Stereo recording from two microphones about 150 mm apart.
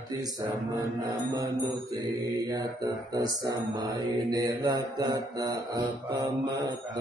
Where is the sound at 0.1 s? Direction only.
25° right (ahead or behind).